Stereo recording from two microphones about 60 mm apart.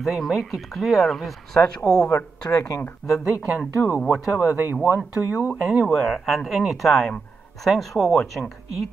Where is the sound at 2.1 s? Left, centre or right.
Left.